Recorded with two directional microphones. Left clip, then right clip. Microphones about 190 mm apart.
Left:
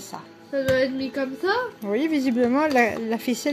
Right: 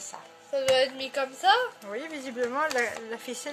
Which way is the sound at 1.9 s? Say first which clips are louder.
Left 12 dB; 20° left (ahead or behind).